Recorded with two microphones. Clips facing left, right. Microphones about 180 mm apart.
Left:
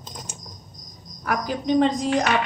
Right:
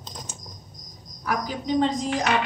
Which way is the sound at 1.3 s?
65° left (ahead or behind).